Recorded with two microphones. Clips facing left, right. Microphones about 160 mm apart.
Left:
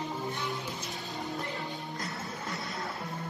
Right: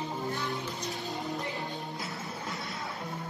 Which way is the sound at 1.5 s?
Centre (ahead or behind).